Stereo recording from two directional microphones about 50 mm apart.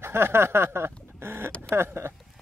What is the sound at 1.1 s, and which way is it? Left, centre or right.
Chicken, right.